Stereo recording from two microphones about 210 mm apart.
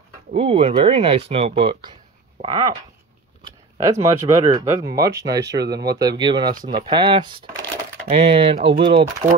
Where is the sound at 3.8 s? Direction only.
15° right (ahead or behind).